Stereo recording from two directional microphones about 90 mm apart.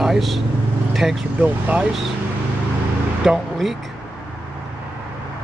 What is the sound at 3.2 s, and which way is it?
Speech, 5° right (ahead or behind).